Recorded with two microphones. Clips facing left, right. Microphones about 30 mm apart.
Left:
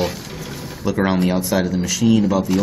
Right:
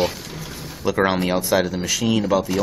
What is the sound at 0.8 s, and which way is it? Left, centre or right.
Speech, centre.